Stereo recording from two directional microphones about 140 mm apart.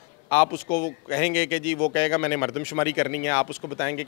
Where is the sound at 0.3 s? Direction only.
20° left (ahead or behind).